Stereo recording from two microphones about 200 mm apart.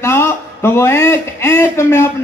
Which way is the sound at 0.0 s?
10° left (ahead or behind).